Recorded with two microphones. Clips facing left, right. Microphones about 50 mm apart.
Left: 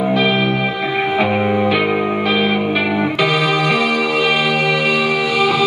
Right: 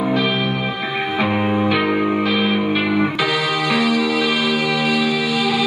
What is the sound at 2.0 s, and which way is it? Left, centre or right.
Music, left.